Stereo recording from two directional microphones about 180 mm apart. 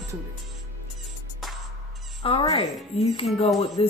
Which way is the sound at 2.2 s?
30° left (ahead or behind).